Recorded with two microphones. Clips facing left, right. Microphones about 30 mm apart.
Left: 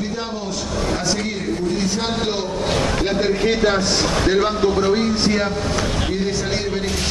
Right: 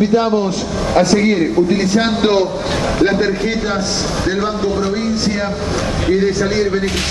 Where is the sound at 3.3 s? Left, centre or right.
Centre.